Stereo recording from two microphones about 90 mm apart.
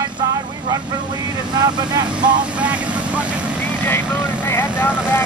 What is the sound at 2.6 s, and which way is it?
Speech, 15° right (ahead or behind).